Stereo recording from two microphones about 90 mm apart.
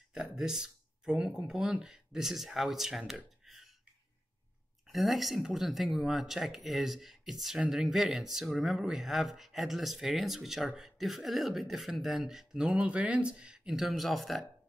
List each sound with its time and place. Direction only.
0.1 s speech: 5° right (ahead or behind)
3.4 s burping: centre (ahead or behind)
4.8 s speech: centre (ahead or behind)